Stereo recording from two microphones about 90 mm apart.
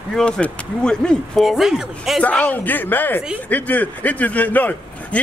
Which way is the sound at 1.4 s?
5° right (ahead or behind).